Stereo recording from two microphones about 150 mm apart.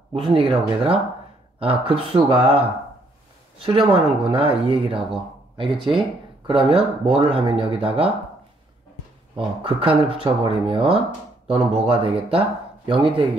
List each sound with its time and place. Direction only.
0.1 s speech: 35° right (ahead or behind)
3.6 s speech: 35° right (ahead or behind)
9.4 s speech: 35° right (ahead or behind)